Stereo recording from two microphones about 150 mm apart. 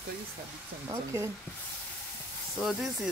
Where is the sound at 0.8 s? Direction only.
20° right (ahead or behind).